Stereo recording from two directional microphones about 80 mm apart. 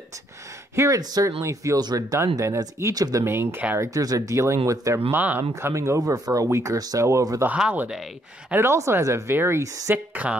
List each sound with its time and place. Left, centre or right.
0.7 s speech: right
1.8 s speech: right
2.1 s speech: right
3.3 s speech: right
3.7 s speech: right
5.1 s speech: right
5.4 s speech: right
8.5 s speech: right
9.6 s speech: right
10.2 s speech: centre